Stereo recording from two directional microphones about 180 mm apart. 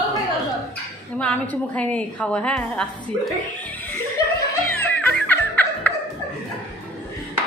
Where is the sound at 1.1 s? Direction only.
10° left (ahead or behind).